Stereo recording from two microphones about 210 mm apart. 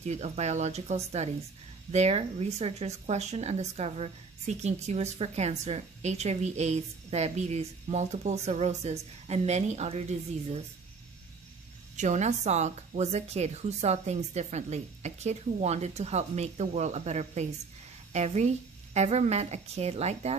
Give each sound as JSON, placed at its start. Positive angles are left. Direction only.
{"t": 0.0, "sound": "speech", "side_deg": -30}
{"t": 12.0, "sound": "speech", "side_deg": -35}